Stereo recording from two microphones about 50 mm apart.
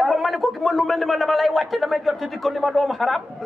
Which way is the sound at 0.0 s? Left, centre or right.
Centre.